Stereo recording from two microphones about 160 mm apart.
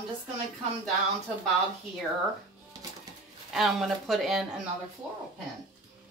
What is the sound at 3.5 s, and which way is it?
Speech, centre (ahead or behind).